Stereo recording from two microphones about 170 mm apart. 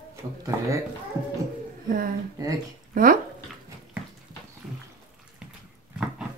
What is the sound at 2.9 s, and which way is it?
Speech, 55° right (ahead or behind).